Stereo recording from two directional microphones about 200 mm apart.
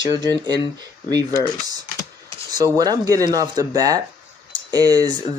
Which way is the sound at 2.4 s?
20° right (ahead or behind).